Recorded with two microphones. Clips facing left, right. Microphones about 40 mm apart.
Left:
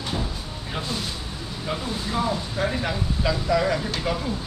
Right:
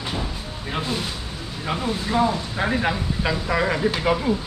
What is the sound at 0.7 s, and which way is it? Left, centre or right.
Speech, right.